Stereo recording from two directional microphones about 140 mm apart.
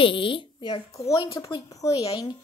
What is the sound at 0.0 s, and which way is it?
A woman's voice, 40° left (ahead or behind).